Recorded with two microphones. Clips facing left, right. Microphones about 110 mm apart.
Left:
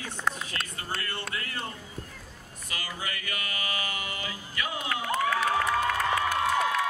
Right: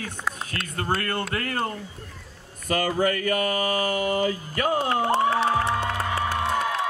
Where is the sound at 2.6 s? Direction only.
50° right (ahead or behind).